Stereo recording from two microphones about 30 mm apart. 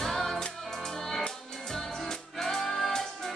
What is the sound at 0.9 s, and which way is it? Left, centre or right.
Music, centre.